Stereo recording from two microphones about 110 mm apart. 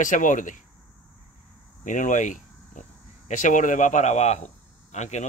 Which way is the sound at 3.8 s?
90° left.